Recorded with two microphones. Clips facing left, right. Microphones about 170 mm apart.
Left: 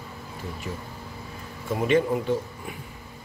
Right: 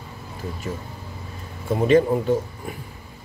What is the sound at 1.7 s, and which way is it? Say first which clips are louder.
A man's voice: right 5 dB; 35° right (ahead or behind).